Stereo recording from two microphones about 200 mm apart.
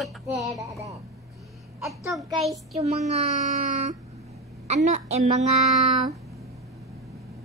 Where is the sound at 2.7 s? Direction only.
35° right (ahead or behind).